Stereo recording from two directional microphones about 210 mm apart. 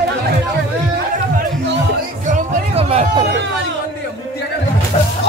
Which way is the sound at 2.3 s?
30° right (ahead or behind).